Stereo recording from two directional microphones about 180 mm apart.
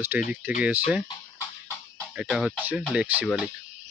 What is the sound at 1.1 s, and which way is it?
Music, 15° left (ahead or behind).